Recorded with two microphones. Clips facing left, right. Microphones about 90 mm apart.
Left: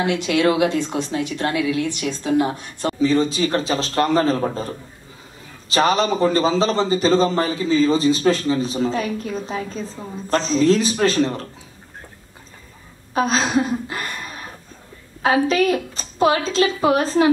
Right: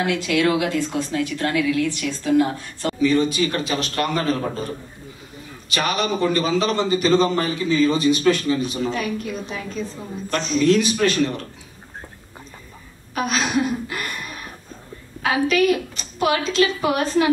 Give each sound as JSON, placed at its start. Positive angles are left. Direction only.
{"t": 0.0, "sound": "a woman's voice", "side_deg": 25}
{"t": 5.7, "sound": "a man's voice", "side_deg": 30}
{"t": 13.1, "sound": "a woman's voice", "side_deg": 30}